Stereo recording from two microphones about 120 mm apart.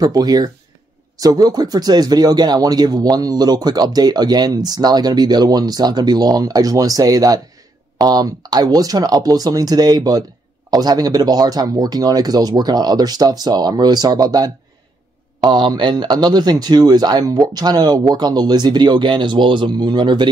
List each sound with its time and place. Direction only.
0.0 s speech: 35° right (ahead or behind)